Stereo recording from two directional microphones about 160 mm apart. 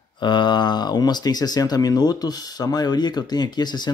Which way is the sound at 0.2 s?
30° left (ahead or behind).